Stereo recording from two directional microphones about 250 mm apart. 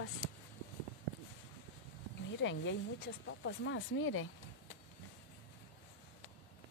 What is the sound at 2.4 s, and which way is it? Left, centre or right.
Speech, left.